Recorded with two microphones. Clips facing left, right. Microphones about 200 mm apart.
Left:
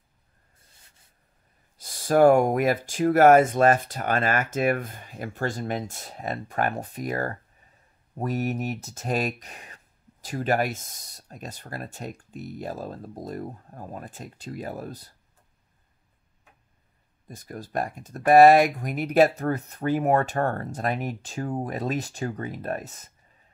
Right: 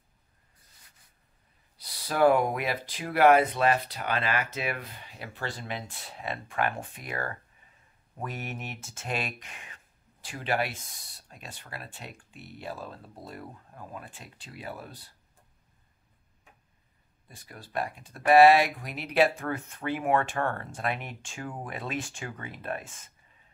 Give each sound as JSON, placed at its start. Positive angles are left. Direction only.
{"t": 1.8, "sound": "speech", "side_deg": 45}
{"t": 17.3, "sound": "speech", "side_deg": 45}